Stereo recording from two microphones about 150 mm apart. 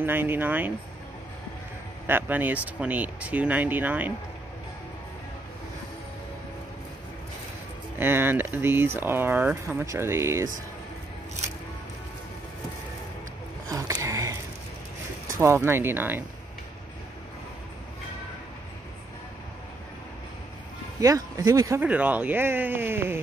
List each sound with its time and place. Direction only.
0.0 s speech: 15° right (ahead or behind)
2.0 s speech: 15° right (ahead or behind)
8.0 s speech: 15° right (ahead or behind)
13.7 s a sound: 20° right (ahead or behind)
15.3 s speech: 20° right (ahead or behind)
21.0 s speech: 25° right (ahead or behind)
21.8 s speech: 10° right (ahead or behind)